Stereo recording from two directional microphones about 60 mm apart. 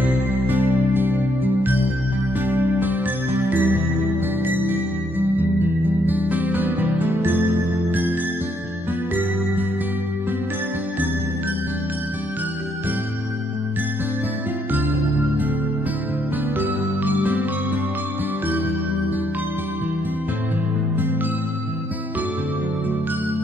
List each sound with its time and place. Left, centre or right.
0.0 s music: right
5.2 s music: right
16.5 s music: right